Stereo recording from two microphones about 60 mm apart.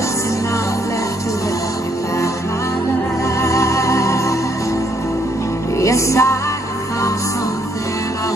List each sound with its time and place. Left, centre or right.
3.3 s music: left
5.8 s music: left